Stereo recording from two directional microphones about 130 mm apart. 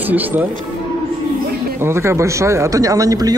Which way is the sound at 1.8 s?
20° right (ahead or behind).